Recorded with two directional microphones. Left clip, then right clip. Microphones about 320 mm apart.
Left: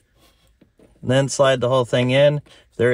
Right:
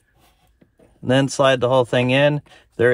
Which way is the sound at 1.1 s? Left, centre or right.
Right.